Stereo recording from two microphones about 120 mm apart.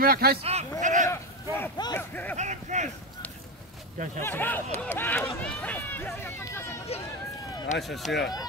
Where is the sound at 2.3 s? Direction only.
80° right.